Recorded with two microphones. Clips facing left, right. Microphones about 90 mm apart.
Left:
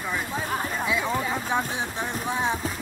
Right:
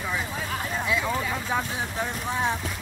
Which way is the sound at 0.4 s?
35° left (ahead or behind).